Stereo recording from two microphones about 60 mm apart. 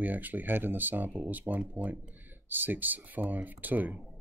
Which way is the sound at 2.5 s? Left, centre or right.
Right.